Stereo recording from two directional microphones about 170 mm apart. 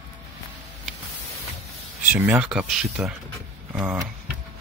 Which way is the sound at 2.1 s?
10° right (ahead or behind).